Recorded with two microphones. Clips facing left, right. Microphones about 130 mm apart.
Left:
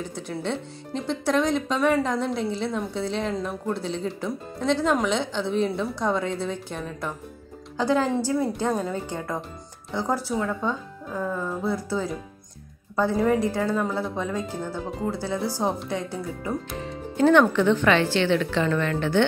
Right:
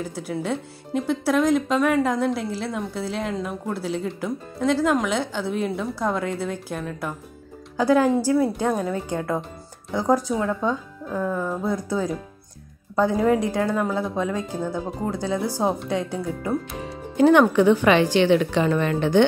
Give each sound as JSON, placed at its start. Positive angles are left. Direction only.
{"t": 0.0, "sound": "a woman's voice", "side_deg": -5}
{"t": 17.2, "sound": "a woman's voice", "side_deg": -10}